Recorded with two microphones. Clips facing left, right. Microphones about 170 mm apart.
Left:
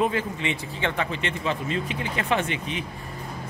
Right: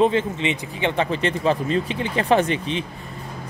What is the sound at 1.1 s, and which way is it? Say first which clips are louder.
Speech: right 7 dB; 35° right (ahead or behind).